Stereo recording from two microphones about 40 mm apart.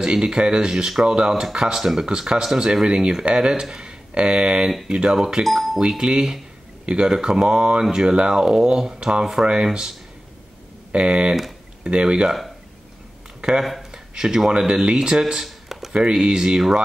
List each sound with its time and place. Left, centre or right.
0.0 s speech: right
5.4 s speech: centre
5.8 s speech: right
10.9 s speech: right
13.4 s a sound: centre
14.6 s speech: centre
15.4 s a sound: centre
15.9 s speech: right